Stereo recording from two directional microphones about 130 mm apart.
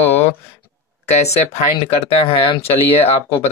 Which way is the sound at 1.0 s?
60° left (ahead or behind).